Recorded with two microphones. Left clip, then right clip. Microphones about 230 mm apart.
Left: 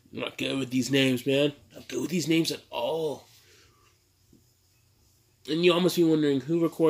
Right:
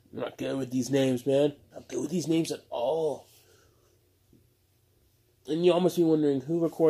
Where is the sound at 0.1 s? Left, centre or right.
Centre.